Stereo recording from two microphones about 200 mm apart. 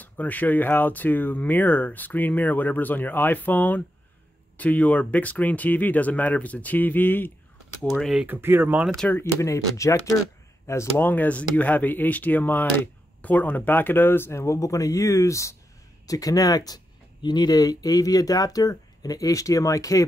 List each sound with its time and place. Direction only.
0.0 s speech: 10° left (ahead or behind)
7.9 s speech: centre (ahead or behind)
8.9 s speech: 5° left (ahead or behind)